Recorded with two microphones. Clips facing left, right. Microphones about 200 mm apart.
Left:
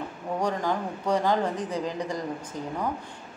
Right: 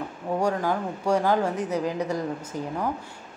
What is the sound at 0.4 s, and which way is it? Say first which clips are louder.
A woman's voice: right 2 dB; 10° right (ahead or behind).